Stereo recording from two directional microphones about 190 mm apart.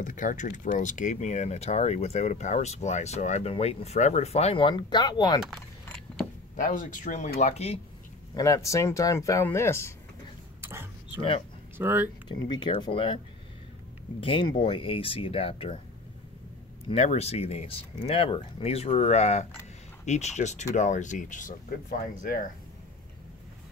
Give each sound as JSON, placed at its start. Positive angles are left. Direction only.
{"t": 0.0, "sound": "speech", "side_deg": 45}
{"t": 5.9, "sound": "vehicle", "side_deg": 0}
{"t": 6.5, "sound": "speech", "side_deg": 45}
{"t": 8.4, "sound": "speech", "side_deg": 15}
{"t": 10.6, "sound": "a sound", "side_deg": -10}
{"t": 11.1, "sound": "speech", "side_deg": 30}
{"t": 11.8, "sound": "speech", "side_deg": -10}
{"t": 12.3, "sound": "speech", "side_deg": 25}
{"t": 14.2, "sound": "speech", "side_deg": 25}
{"t": 16.9, "sound": "speech", "side_deg": 35}